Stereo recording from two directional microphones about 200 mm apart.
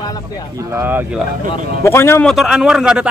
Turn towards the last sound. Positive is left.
turn(degrees=-5)  # may be behind; listen again after turning